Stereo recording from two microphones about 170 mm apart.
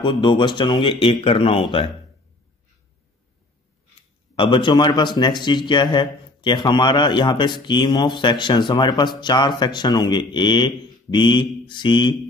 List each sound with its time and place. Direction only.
0.0 s a man's voice: 30° left (ahead or behind)
4.4 s a man's voice: 30° left (ahead or behind)